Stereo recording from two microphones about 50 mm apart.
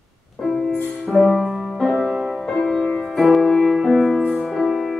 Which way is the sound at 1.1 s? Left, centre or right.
Centre.